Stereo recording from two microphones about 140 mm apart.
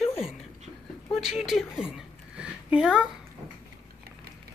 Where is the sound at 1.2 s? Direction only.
5° right (ahead or behind).